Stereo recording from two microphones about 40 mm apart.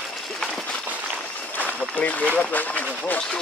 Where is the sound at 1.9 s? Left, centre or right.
Left.